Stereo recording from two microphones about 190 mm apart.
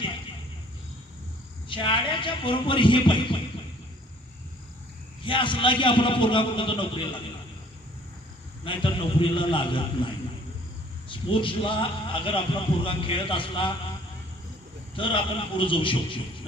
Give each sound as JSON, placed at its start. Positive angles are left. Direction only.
{"t": 1.7, "sound": "a man's voice", "side_deg": 25}
{"t": 5.2, "sound": "a man's voice", "side_deg": 25}
{"t": 8.6, "sound": "a man's voice", "side_deg": 25}
{"t": 15.0, "sound": "a man's voice", "side_deg": 25}